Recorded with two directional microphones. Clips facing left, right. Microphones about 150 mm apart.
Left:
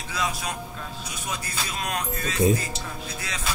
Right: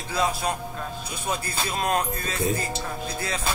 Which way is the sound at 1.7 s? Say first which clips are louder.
Right 6 dB; 35° right (ahead or behind).